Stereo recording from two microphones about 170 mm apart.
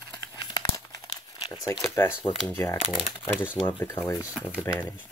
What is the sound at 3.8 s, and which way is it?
Speech, 15° left (ahead or behind).